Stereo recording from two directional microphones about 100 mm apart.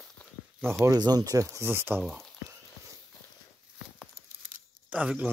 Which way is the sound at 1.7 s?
20° right (ahead or behind).